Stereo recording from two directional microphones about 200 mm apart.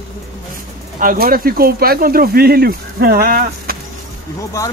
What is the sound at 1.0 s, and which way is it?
Speech, 45° right (ahead or behind).